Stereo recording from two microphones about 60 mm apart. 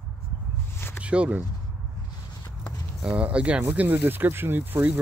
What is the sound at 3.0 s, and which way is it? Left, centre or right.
Speech, right.